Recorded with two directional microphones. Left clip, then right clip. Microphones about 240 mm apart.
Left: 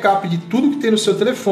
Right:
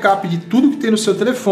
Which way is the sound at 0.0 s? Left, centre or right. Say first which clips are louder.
Right 1 dB; centre.